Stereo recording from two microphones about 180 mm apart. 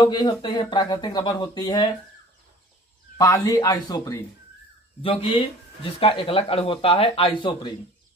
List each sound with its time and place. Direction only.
0.0 s speech: 25° left (ahead or behind)
3.2 s speech: 20° left (ahead or behind)